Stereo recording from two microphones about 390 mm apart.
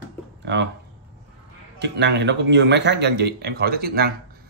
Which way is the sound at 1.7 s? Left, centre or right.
Right.